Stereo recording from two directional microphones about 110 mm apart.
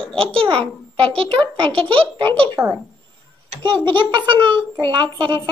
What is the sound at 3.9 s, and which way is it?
A child's voice, 50° right (ahead or behind).